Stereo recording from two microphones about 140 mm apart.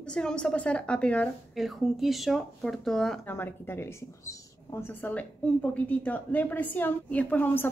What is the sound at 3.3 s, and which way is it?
Speech, 15° left (ahead or behind).